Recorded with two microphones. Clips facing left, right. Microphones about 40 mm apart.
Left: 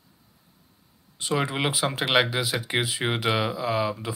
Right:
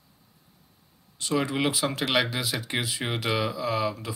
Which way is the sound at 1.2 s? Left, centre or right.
Left.